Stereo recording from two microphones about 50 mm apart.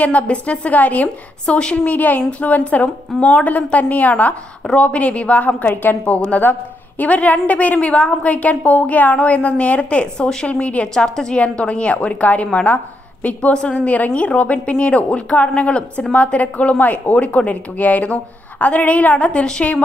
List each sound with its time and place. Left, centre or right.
0.0 s a woman's voice: left
1.4 s a woman's voice: centre
1.9 s a woman's voice: left
7.0 s a woman's voice: left
13.5 s a woman's voice: centre